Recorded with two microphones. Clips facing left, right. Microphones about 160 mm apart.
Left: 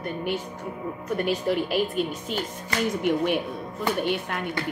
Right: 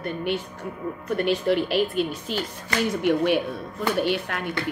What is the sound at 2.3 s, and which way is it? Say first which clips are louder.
A woman's voice: right 1 dB; 90° right.